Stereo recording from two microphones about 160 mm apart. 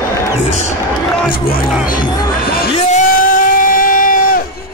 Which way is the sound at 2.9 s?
55° left (ahead or behind).